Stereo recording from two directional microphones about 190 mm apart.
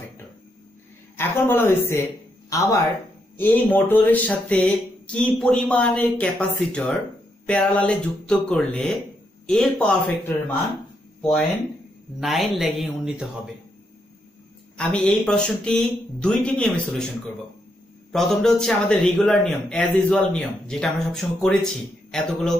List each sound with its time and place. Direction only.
1.1 s a man's voice: 10° left (ahead or behind)
14.8 s a man's voice: 5° left (ahead or behind)
18.1 s a man's voice: centre (ahead or behind)